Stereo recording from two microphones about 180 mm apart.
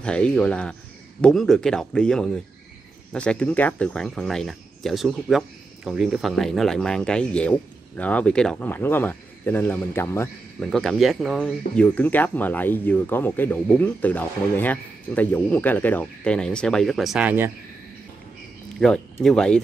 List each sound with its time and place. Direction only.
0.0 s speech: 5° left (ahead or behind)
10.6 s speech: centre (ahead or behind)
19.2 s speech: 5° left (ahead or behind)